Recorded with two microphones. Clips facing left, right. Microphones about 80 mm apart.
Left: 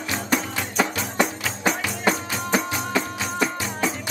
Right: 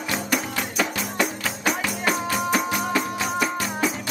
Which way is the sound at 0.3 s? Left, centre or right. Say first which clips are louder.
Left 1 dB; left.